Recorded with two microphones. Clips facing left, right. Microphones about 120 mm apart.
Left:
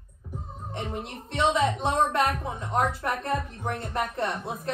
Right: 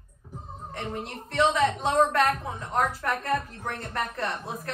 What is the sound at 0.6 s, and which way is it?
A woman's voice, 25° left (ahead or behind).